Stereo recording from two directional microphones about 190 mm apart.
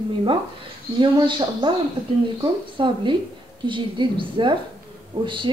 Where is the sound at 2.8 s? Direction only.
25° right (ahead or behind).